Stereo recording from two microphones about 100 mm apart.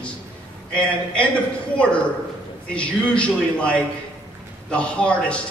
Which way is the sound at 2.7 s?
10° left (ahead or behind).